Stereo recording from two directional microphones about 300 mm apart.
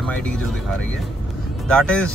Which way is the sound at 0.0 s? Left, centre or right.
Centre.